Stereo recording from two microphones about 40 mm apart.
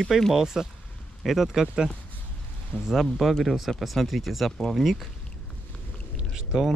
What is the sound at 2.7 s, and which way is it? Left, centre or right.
Speech, left.